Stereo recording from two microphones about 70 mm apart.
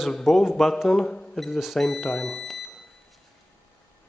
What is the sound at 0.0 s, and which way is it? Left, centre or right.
Speech, centre.